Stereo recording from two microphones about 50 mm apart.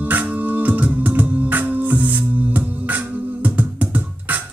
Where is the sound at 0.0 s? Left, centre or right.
Right.